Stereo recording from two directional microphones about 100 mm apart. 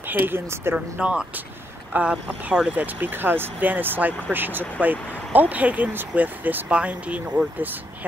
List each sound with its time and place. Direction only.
0.1 s speech: 20° right (ahead or behind)
0.7 s speech: 10° right (ahead or behind)